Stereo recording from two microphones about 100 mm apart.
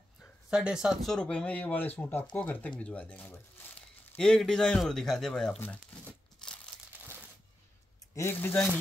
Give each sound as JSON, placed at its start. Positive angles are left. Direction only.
{"t": 0.5, "sound": "speech", "side_deg": -5}
{"t": 1.0, "sound": "speech", "side_deg": 10}
{"t": 4.2, "sound": "speech", "side_deg": 5}
{"t": 6.4, "sound": "crumpling", "side_deg": 5}
{"t": 7.0, "sound": "a sound", "side_deg": -20}
{"t": 8.1, "sound": "speech", "side_deg": 25}